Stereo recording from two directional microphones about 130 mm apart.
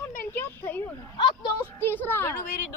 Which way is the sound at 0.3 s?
15° left (ahead or behind).